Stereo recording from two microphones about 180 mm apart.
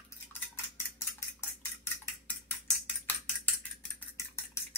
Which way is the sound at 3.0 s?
10° left (ahead or behind).